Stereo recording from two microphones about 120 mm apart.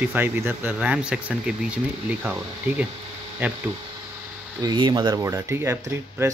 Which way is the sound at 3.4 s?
15° right (ahead or behind).